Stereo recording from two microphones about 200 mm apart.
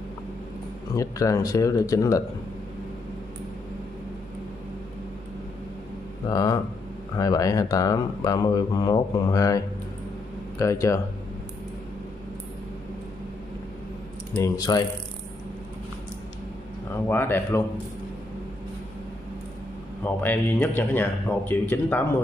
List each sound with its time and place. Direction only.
0.9 s speech: 15° left (ahead or behind)
6.2 s speech: 20° left (ahead or behind)
10.6 s speech: 15° left (ahead or behind)
14.3 s speech: 20° left (ahead or behind)
16.9 s speech: 10° left (ahead or behind)
20.0 s speech: 10° left (ahead or behind)